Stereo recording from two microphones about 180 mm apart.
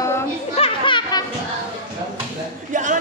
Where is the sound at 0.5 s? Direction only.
30° left (ahead or behind).